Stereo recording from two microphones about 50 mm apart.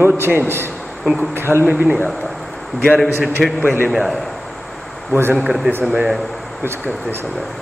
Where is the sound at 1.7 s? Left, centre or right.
Right.